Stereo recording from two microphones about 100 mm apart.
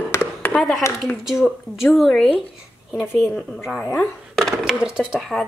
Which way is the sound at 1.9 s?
Centre (ahead or behind).